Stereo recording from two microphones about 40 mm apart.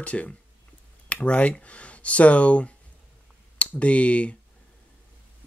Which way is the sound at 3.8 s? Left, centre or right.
Left.